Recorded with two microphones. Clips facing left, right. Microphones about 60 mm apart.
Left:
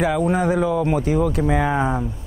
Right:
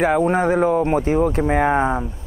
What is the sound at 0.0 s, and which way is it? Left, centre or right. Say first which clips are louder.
Speech: right 2 dB; right.